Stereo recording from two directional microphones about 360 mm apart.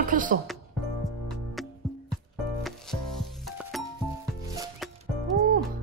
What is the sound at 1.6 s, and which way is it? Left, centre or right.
Music, centre.